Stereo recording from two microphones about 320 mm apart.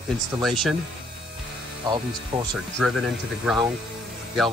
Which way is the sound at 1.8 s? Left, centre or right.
Centre.